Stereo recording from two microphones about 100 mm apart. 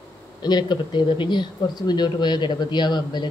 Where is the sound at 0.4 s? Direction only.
45° left (ahead or behind).